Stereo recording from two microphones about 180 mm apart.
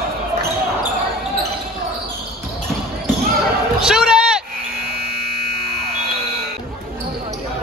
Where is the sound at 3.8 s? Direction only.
5° right (ahead or behind).